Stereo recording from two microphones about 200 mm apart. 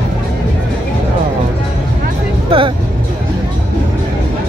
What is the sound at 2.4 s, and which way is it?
Speech, 25° right (ahead or behind).